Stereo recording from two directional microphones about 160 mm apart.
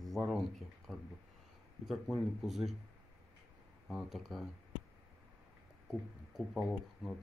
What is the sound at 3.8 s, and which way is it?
Speech, centre (ahead or behind).